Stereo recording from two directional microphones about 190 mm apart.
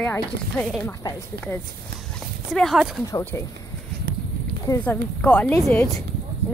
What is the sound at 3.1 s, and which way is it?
Speech, 15° left (ahead or behind).